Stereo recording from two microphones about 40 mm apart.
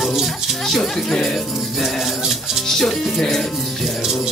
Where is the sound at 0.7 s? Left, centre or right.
Centre.